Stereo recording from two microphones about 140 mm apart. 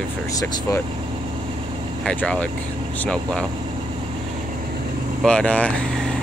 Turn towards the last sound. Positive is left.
turn(degrees=10)  # may be behind; listen again after turning